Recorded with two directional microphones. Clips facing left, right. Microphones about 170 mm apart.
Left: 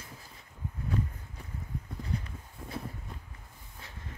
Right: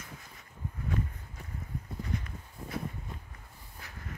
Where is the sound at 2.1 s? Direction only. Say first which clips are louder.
Left 1 dB; 35° left (ahead or behind).